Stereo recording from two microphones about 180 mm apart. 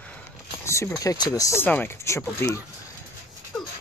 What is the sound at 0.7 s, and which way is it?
Speech, 15° left (ahead or behind).